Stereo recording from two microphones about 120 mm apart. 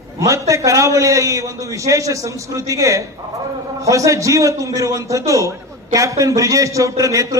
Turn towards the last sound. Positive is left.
turn(degrees=-25)  # may be behind; listen again after turning